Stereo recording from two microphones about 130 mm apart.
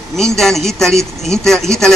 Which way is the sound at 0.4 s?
Centre (ahead or behind).